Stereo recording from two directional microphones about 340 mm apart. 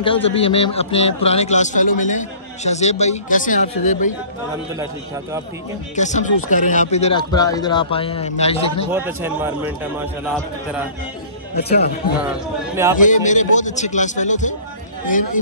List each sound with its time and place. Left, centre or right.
0.0 s a man's voice: centre
5.9 s speech: left
8.9 s speech: centre
12.2 s speech: centre
13.0 s a man's voice: left